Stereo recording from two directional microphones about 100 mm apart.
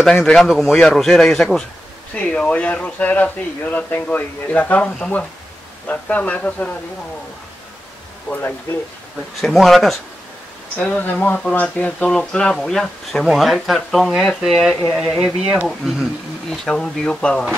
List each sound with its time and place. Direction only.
0.0 s speech: centre (ahead or behind)
8.3 s speech: 20° left (ahead or behind)
9.4 s speech: centre (ahead or behind)
10.8 s speech: 15° left (ahead or behind); by 16.1 s 5° right (ahead or behind)
16.4 s speech: 5° left (ahead or behind)